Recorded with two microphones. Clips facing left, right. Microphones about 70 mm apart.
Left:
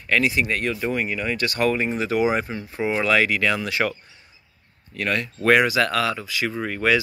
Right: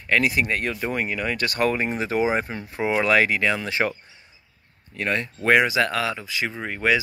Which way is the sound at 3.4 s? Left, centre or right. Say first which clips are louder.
Left 1 dB; right.